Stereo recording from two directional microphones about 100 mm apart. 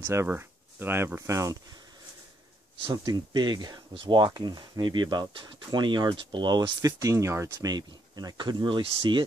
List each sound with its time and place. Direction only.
0.0 s speech: 25° right (ahead or behind)
2.8 s speech: 45° right (ahead or behind)